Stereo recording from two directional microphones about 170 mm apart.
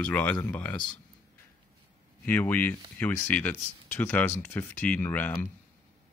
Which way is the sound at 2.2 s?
10° left (ahead or behind).